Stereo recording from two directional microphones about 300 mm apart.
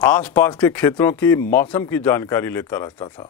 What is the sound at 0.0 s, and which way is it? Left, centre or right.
Speech, centre.